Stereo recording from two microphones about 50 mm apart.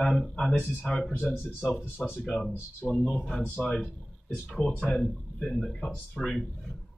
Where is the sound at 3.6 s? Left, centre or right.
Centre.